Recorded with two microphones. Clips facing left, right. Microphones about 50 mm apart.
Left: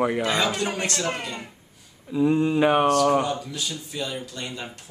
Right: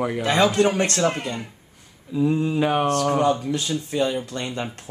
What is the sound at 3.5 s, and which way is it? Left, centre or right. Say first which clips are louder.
Speech: right 7 dB; right.